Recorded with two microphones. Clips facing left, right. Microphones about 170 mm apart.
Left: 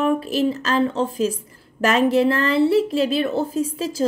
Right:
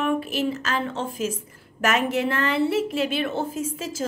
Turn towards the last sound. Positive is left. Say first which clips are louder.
# left 6 dB
turn(degrees=35)  # may be behind; listen again after turning